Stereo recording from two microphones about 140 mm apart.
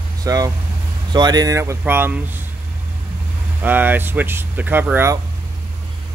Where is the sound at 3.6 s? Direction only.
15° right (ahead or behind).